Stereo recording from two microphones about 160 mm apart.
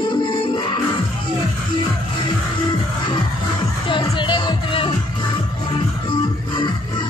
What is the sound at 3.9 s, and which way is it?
Music, 30° left (ahead or behind).